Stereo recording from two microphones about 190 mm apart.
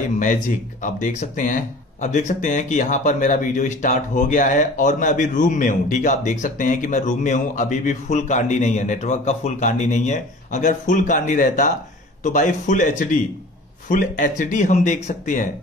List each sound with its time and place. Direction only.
0.8 s speech: 40° left (ahead or behind)